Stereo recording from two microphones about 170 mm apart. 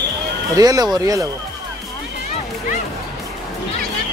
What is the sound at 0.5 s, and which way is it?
Speech, 20° right (ahead or behind).